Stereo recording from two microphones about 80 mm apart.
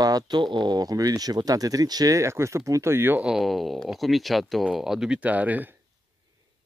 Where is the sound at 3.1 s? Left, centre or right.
Centre.